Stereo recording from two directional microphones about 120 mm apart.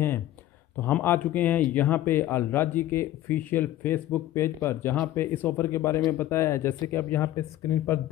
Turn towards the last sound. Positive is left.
turn(degrees=25)  # may be behind; listen again after turning